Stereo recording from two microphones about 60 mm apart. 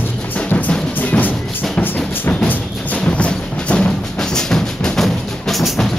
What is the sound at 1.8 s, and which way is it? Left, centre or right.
Music, left.